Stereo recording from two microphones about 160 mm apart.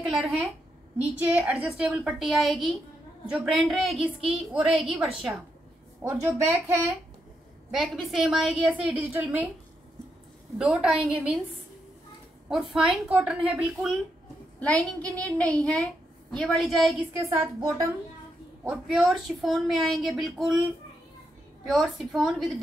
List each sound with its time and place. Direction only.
0.0 s a woman's voice: 5° right (ahead or behind)
6.0 s speech: 15° right (ahead or behind)
7.7 s a woman's voice: centre (ahead or behind)
10.6 s a woman's voice: 5° right (ahead or behind)
12.4 s a woman's voice: 5° right (ahead or behind)
14.6 s a woman's voice: 10° left (ahead or behind)
17.2 s a woman's voice: 20° right (ahead or behind)
18.6 s a woman's voice: 5° right (ahead or behind)
21.6 s a woman's voice: centre (ahead or behind)